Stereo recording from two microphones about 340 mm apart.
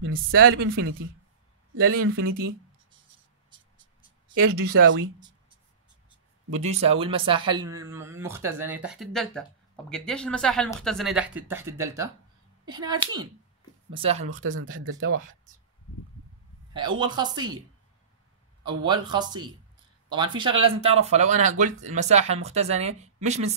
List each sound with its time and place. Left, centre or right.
0.0 s speech: right
2.0 s speech: right
3.4 s a sound: centre
4.6 s speech: right
6.6 s speech: centre
14.4 s speech: right
16.7 s speech: centre
18.9 s speech: centre